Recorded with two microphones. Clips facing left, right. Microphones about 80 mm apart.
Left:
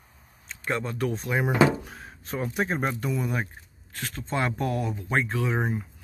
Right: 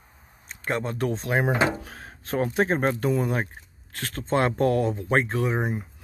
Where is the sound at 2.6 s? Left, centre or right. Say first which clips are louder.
Right 4 dB; right.